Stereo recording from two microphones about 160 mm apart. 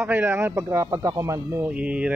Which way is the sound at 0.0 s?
15° right (ahead or behind).